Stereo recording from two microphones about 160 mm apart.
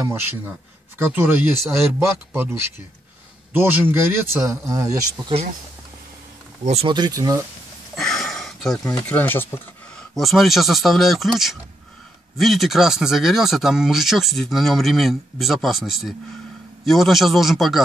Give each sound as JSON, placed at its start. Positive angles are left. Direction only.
{"t": 0.0, "sound": "speech", "side_deg": -15}
{"t": 6.6, "sound": "speech", "side_deg": -40}
{"t": 6.9, "sound": "speech", "side_deg": -25}
{"t": 7.9, "sound": "a sound", "side_deg": 5}
{"t": 9.1, "sound": "speech", "side_deg": 10}
{"t": 10.1, "sound": "speech", "side_deg": 0}